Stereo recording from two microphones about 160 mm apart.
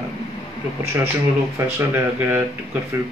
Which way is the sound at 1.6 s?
10° right (ahead or behind).